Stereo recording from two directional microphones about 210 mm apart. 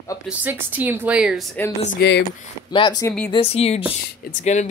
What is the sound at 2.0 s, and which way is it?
Speech, 55° left (ahead or behind).